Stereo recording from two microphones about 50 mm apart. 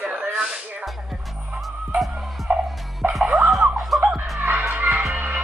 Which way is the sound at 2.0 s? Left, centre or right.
Centre.